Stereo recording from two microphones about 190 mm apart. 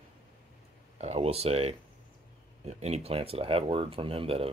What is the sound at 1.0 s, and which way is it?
Speech, 35° right (ahead or behind).